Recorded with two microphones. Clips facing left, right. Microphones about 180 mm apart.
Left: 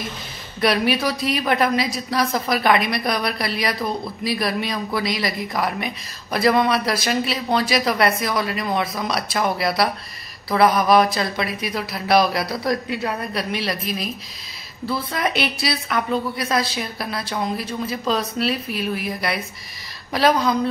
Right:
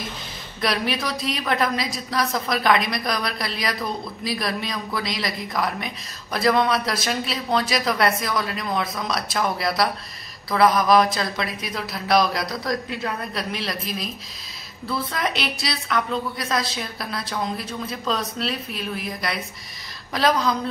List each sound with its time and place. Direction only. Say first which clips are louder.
0.6 s a woman's voice: left 5 dB; centre (ahead or behind)